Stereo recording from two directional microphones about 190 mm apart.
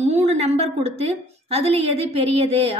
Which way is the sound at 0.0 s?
35° right (ahead or behind).